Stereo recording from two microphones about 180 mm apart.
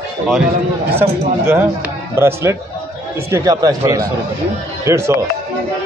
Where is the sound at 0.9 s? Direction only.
15° right (ahead or behind).